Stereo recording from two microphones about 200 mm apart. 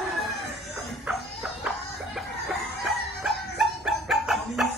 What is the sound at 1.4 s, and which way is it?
Chicken, centre (ahead or behind).